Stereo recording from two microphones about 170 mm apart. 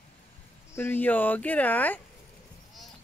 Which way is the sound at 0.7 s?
10° left (ahead or behind).